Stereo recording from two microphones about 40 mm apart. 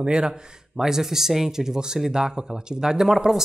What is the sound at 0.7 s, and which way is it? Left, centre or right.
Speech, centre.